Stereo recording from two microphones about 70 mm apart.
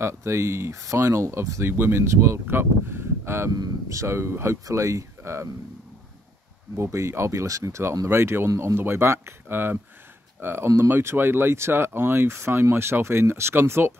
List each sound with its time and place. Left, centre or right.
0.0 s speech: right
6.8 s speech: right